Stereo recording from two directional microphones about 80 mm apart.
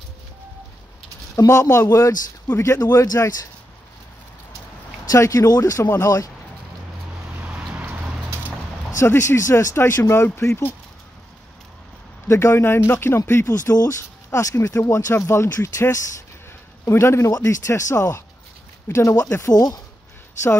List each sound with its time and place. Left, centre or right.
1.3 s speech: left
2.8 s speech: left
5.1 s speech: left
7.3 s vehicle: centre
7.8 s a sound: centre
8.9 s speech: left
12.3 s speech: left
17.3 s speech: left